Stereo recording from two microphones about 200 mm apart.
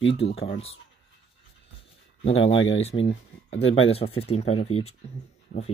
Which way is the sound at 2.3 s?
70° left (ahead or behind).